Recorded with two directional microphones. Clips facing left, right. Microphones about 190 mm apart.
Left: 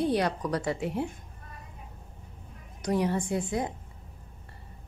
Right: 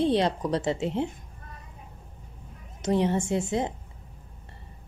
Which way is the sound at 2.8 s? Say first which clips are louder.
Right 3 dB; 25° right (ahead or behind).